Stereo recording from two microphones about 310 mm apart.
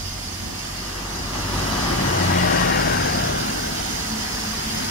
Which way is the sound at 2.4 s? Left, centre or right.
Left.